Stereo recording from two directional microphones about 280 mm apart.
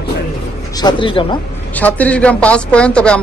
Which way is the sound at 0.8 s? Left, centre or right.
Centre.